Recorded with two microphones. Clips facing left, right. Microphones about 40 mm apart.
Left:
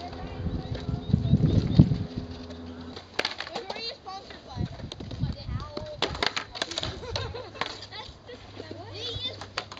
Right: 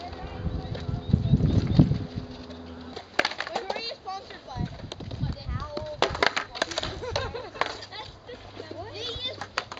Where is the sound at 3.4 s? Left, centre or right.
Right.